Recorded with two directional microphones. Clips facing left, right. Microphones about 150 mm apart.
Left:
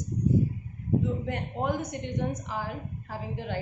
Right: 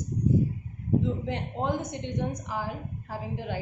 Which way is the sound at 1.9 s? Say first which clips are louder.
Even; 20° right (ahead or behind).